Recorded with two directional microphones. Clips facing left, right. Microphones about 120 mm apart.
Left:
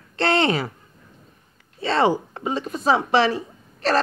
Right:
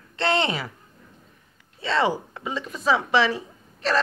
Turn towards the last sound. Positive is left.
turn(degrees=45)  # may be behind; listen again after turning